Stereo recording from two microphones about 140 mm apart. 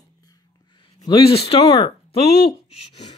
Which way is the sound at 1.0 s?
40° left (ahead or behind).